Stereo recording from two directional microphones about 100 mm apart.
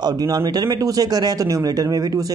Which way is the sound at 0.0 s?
40° right (ahead or behind).